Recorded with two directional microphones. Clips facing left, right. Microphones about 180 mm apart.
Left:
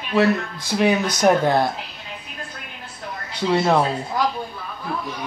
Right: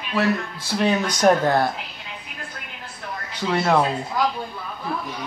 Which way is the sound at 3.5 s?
15° left (ahead or behind).